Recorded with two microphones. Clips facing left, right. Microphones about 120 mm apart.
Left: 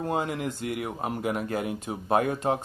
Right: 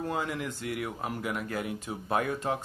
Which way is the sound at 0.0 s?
25° left (ahead or behind).